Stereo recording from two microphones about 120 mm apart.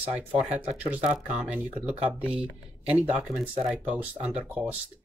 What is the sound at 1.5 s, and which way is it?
Speech, 10° right (ahead or behind).